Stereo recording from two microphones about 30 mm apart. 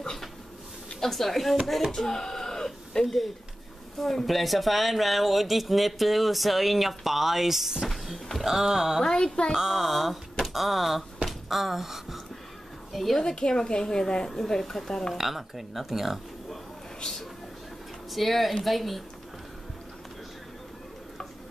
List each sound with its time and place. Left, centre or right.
1.0 s speech: centre
1.9 s a sound: centre
4.0 s speech: centre
7.8 s speech: centre
9.0 s a woman's voice: left
9.5 s speech: centre
11.2 s a sound: centre
13.2 s a woman's voice: left
15.1 s speech: centre
18.1 s speech: centre